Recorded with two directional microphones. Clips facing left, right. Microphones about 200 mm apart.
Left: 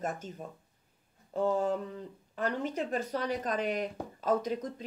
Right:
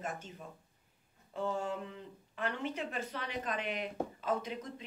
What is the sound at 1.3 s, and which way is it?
Speech, 40° left (ahead or behind).